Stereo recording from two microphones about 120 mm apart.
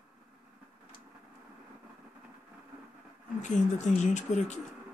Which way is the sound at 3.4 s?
85° left.